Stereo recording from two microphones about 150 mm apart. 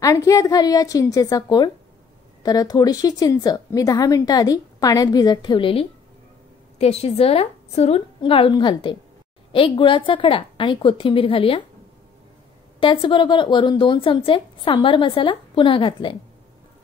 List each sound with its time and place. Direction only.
0.0 s a woman's voice: 20° left (ahead or behind); by 11.6 s 40° left (ahead or behind)
12.8 s speech: 35° left (ahead or behind)